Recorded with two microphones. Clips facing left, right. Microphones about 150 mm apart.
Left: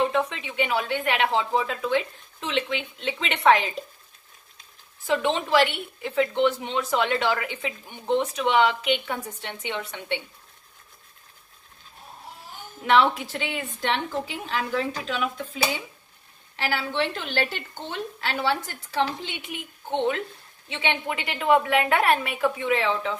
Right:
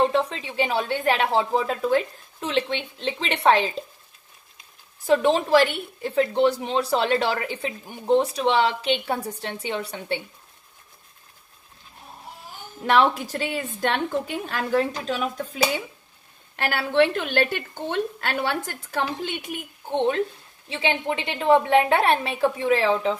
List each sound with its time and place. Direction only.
0.0 s a woman's voice: 35° right (ahead or behind)
5.0 s a woman's voice: 40° right (ahead or behind)
12.8 s a woman's voice: 40° right (ahead or behind)
16.5 s a woman's voice: 55° right (ahead or behind)
20.6 s a woman's voice: 30° right (ahead or behind)